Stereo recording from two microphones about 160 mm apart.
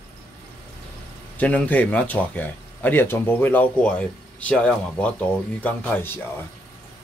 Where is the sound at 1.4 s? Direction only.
10° left (ahead or behind).